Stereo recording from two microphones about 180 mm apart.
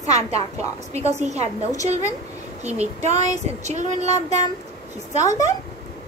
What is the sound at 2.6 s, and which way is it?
A woman's voice, 40° right (ahead or behind).